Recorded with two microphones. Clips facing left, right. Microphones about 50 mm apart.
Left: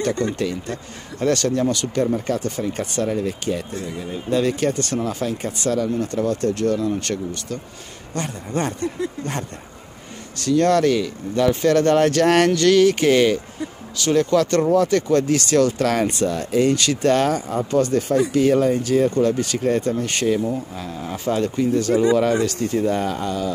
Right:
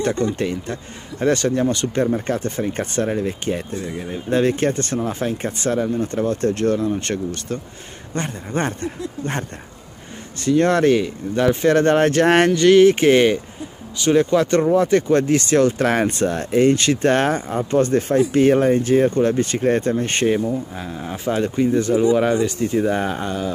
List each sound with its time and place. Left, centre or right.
0.4 s speech: right